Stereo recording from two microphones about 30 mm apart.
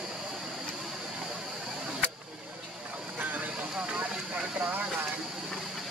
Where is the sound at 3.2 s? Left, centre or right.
Right.